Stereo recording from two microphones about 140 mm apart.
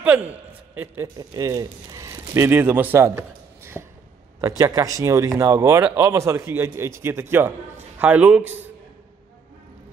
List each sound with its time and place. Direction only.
0.0 s a man's voice: 10° right (ahead or behind)
1.0 s speech: 25° right (ahead or behind)